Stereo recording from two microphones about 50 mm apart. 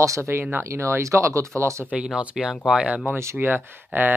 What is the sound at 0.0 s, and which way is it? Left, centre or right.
Speech, right.